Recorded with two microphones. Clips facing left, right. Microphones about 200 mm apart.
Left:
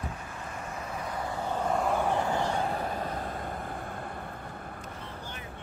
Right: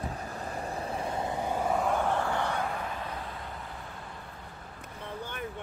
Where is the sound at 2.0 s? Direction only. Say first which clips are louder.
Left 1 dB; 15° left (ahead or behind).